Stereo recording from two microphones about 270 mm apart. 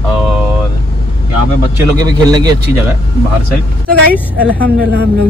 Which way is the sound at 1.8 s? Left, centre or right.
Centre.